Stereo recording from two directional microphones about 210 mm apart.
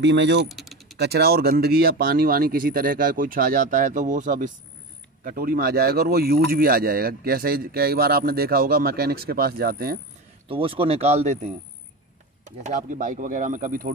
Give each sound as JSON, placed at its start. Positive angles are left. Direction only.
{"t": 0.0, "sound": "speech", "side_deg": -55}
{"t": 0.5, "sound": "typing", "side_deg": 0}
{"t": 0.9, "sound": "speech", "side_deg": -50}
{"t": 10.5, "sound": "speech", "side_deg": -25}
{"t": 12.6, "sound": "speech", "side_deg": -40}